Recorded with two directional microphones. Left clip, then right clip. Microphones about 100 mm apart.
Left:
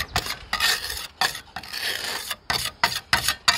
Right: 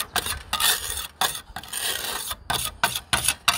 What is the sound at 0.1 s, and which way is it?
Filing, 25° right (ahead or behind).